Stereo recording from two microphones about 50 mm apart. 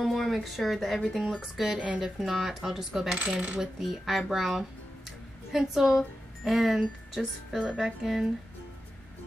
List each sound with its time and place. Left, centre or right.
0.0 s speech: centre
3.3 s coin: centre
3.5 s speech: centre
6.8 s speech: centre